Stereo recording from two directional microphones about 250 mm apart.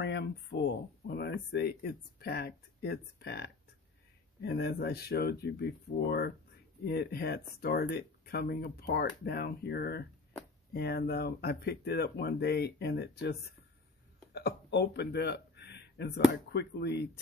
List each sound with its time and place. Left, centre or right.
0.0 s a man's voice: left